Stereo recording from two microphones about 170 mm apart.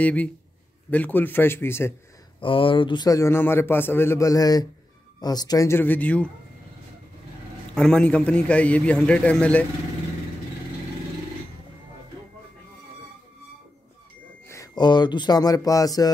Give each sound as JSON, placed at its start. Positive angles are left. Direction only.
{"t": 0.0, "sound": "a man's voice", "side_deg": 10}
{"t": 2.4, "sound": "a man's voice", "side_deg": 30}
{"t": 7.7, "sound": "a man's voice", "side_deg": 5}
{"t": 14.5, "sound": "a man's voice", "side_deg": 20}